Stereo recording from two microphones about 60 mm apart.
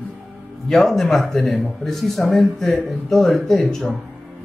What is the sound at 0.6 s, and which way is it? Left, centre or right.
Speech, centre.